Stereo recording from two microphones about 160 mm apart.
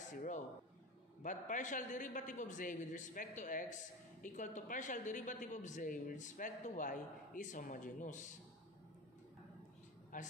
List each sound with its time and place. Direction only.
1.2 s a man's voice: 50° left (ahead or behind)
10.1 s speech: 55° left (ahead or behind)